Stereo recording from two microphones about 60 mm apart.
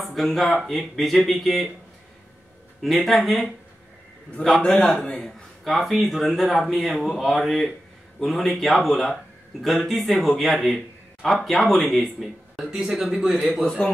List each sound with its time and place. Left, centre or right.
0.0 s speech: centre
3.1 s a man's voice: centre
5.2 s speech: centre
12.5 s speech: centre
13.7 s a man's voice: centre